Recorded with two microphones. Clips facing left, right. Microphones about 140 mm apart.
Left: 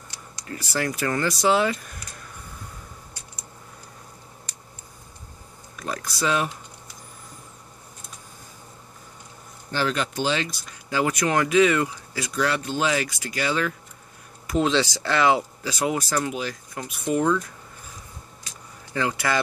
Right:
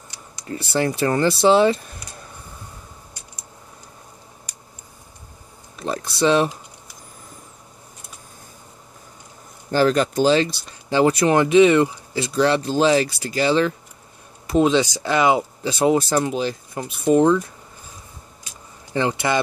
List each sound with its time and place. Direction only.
0.4 s a sound: 25° right (ahead or behind)
0.7 s speech: 30° right (ahead or behind)
5.8 s a sound: 25° right (ahead or behind)
9.7 s speech: 40° right (ahead or behind)
14.5 s speech: 20° right (ahead or behind)
18.9 s speech: 25° right (ahead or behind)